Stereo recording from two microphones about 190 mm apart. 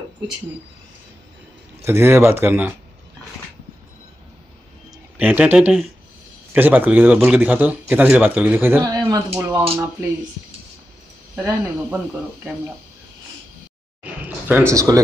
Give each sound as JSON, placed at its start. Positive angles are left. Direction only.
{"t": 1.8, "sound": "speech", "side_deg": -10}
{"t": 5.1, "sound": "speech", "side_deg": -5}
{"t": 11.3, "sound": "speech", "side_deg": -10}
{"t": 14.7, "sound": "speech", "side_deg": -15}